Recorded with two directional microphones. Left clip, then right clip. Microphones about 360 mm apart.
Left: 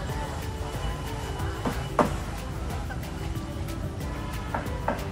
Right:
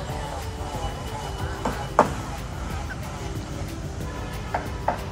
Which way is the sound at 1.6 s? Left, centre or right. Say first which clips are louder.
Right 5 dB; right.